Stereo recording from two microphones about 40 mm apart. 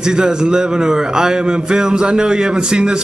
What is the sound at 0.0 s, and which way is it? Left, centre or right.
A man's voice, centre.